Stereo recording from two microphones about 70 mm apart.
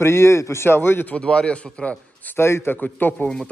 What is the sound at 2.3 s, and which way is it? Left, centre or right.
Speech, left.